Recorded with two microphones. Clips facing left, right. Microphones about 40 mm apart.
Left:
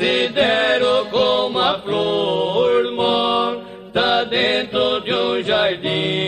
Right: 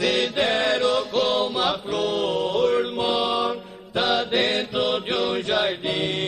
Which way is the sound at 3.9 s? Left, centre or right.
Left.